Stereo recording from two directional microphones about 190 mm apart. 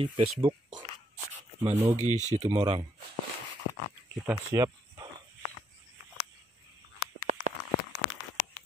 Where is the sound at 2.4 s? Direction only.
20° right (ahead or behind).